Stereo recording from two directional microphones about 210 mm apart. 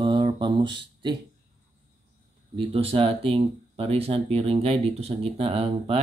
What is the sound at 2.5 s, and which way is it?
Speech, 25° right (ahead or behind).